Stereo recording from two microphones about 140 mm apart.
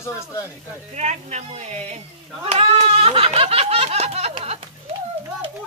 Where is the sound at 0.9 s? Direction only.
55° right (ahead or behind).